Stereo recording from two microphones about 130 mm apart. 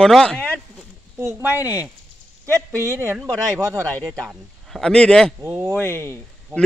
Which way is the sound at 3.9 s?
5° left (ahead or behind).